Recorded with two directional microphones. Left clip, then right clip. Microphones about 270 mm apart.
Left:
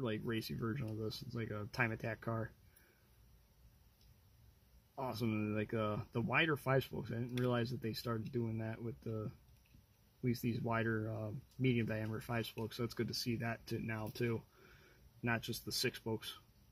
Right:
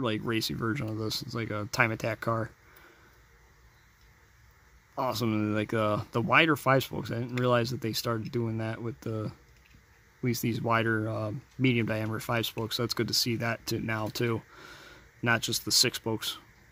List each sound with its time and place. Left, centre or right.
0.0 s speech: right
4.9 s speech: right